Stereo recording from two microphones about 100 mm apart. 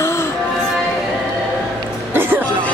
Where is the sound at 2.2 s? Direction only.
20° right (ahead or behind).